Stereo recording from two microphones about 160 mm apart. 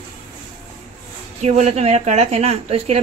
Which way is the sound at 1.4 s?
45° right (ahead or behind).